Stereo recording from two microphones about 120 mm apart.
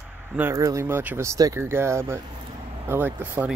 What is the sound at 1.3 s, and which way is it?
Speech, 30° right (ahead or behind).